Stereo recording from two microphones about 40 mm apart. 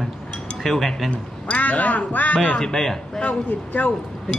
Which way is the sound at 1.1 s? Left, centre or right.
Left.